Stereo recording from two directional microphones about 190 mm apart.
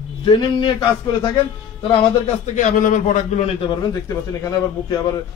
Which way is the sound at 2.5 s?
40° left (ahead or behind).